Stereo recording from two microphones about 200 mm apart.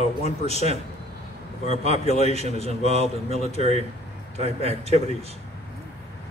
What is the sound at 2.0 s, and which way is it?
Speech, 35° left (ahead or behind).